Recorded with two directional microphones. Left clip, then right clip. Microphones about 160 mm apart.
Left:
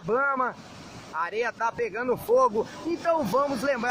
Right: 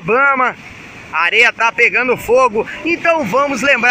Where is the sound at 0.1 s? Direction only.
25° right (ahead or behind).